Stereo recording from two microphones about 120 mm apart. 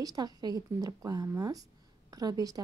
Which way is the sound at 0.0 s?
35° right (ahead or behind).